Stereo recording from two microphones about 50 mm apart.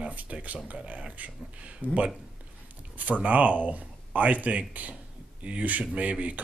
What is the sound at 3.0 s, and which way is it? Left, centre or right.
Speech, right.